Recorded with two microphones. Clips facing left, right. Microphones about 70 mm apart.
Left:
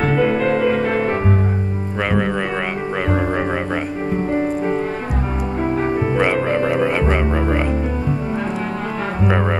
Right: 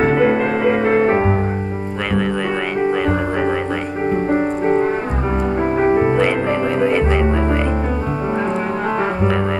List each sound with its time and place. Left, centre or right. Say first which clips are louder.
0.0 s music: right 2 dB; right
6.1 s music: right 1 dB; centre